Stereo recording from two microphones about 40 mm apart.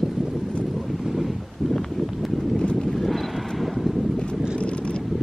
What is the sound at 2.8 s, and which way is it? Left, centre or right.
Vehicle, centre.